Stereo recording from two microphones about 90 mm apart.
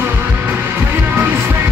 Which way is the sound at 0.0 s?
25° right (ahead or behind).